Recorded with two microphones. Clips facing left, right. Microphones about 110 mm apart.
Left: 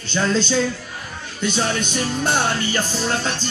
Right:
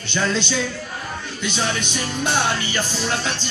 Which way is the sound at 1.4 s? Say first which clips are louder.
Left 3 dB; 45° left (ahead or behind).